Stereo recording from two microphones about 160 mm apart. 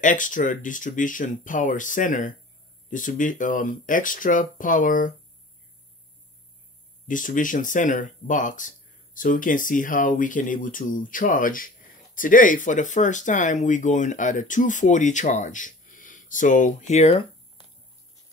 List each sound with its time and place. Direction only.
0.0 s speech: 55° left (ahead or behind)
7.1 s speech: 55° left (ahead or behind)